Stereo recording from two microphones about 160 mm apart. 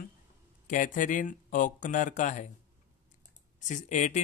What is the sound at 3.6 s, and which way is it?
Speech, 50° left (ahead or behind).